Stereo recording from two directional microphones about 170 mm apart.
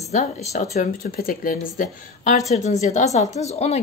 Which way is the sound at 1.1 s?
55° left (ahead or behind).